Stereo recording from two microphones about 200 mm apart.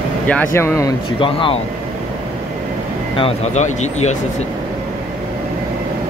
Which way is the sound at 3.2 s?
30° left (ahead or behind).